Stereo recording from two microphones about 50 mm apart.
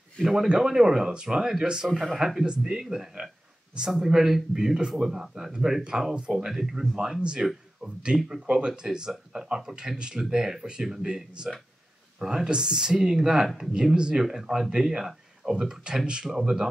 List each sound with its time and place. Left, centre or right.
0.2 s speech: centre
2.4 s speech: centre
7.2 s speech: centre